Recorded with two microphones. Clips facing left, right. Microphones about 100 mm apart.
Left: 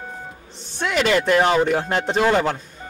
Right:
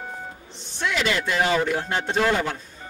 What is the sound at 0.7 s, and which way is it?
Speech, 50° left (ahead or behind).